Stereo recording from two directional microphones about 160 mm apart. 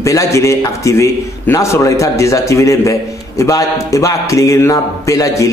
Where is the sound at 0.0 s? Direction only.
20° left (ahead or behind).